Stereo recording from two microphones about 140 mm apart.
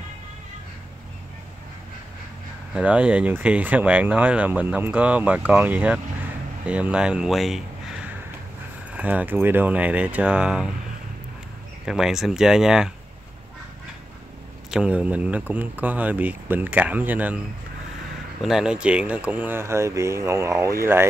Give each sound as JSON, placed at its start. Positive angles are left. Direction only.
{"t": 2.7, "sound": "speech", "side_deg": -10}
{"t": 11.8, "sound": "speech", "side_deg": -5}
{"t": 14.7, "sound": "speech", "side_deg": -5}
{"t": 18.4, "sound": "speech", "side_deg": -5}